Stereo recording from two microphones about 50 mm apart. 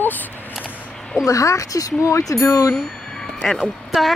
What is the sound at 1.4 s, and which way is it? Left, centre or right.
Speech, left.